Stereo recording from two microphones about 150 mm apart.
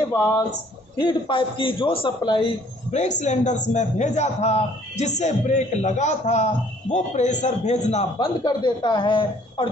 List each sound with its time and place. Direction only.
0.9 s a man's voice: 30° left (ahead or behind)
2.9 s a man's voice: 50° left (ahead or behind)
8.2 s a man's voice: 30° left (ahead or behind)